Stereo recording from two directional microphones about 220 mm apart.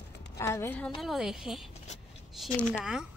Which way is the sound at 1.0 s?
Centre (ahead or behind).